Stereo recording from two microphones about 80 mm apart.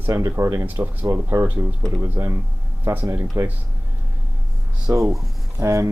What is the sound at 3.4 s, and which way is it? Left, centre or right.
Speech, right.